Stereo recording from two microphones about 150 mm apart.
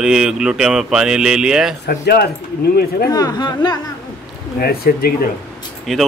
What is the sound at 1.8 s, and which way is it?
Speech, 90° left.